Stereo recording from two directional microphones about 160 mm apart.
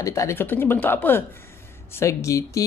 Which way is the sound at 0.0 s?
20° left (ahead or behind).